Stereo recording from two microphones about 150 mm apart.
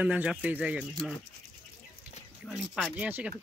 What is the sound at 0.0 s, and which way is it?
Speech, 10° right (ahead or behind).